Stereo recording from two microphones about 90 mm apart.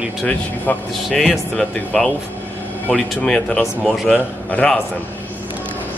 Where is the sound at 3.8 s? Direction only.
Centre (ahead or behind).